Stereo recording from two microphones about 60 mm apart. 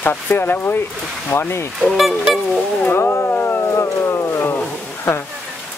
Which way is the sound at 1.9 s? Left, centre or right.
Centre.